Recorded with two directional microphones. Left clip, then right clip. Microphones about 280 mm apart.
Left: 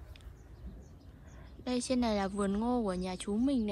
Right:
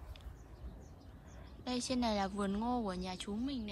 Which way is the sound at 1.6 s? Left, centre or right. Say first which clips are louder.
Left 4 dB; centre.